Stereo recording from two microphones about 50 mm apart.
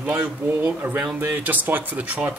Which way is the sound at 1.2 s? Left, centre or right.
Right.